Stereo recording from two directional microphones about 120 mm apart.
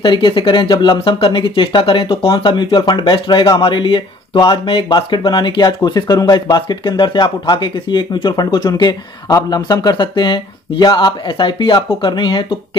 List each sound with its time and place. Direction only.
0.0 s speech: 45° left (ahead or behind)